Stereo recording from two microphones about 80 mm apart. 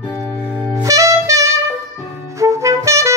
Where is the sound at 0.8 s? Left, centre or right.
Right.